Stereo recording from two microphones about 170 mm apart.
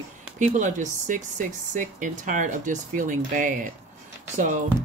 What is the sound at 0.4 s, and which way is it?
Speech, 45° right (ahead or behind).